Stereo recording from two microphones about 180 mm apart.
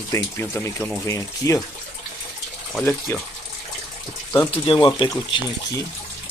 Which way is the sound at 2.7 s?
10° left (ahead or behind).